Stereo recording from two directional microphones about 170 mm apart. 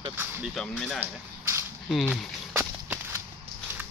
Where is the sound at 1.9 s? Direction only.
Centre (ahead or behind).